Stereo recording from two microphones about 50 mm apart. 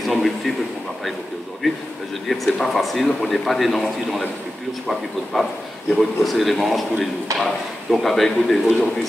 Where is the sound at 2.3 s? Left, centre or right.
Centre.